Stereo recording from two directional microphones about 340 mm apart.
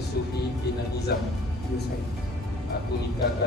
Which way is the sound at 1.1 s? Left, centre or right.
Left.